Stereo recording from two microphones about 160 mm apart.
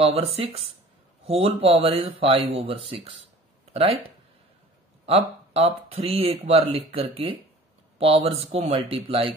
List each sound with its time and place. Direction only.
0.0 s speech: 40° right (ahead or behind)
5.0 s speech: 40° right (ahead or behind)